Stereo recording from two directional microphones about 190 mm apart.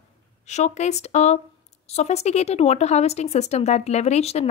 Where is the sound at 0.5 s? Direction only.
35° left (ahead or behind).